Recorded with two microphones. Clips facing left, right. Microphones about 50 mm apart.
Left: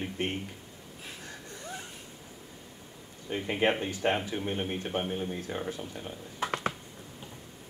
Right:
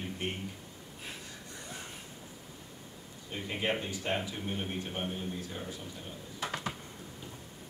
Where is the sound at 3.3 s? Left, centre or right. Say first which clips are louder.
Left 6 dB; left.